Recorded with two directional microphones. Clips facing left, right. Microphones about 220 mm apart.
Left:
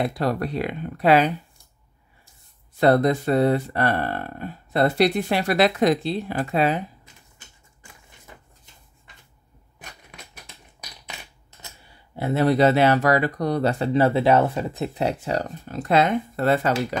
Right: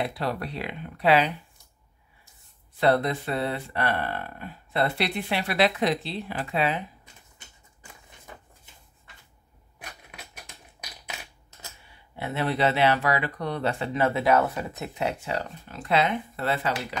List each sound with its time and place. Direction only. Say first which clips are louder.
0.0 s speech: left 6 dB; 45° left (ahead or behind)
2.8 s speech: left 5 dB; 45° left (ahead or behind)
12.2 s speech: left 7 dB; 40° left (ahead or behind)